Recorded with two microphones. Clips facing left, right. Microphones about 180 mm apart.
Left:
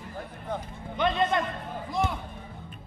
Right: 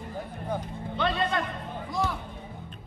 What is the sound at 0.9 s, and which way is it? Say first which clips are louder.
Speech: left 2 dB; 15° left (ahead or behind).